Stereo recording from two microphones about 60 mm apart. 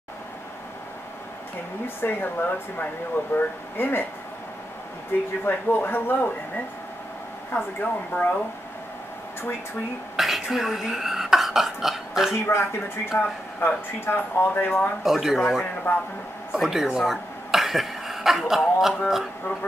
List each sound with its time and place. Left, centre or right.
2.0 s speech: left
5.4 s speech: left
10.1 s speech: centre
12.4 s speech: left
15.0 s speech: centre
15.6 s speech: left
16.5 s speech: centre